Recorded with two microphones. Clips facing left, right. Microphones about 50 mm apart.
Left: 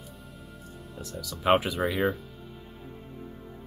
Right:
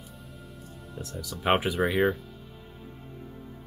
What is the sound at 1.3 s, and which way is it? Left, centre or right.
Speech, centre.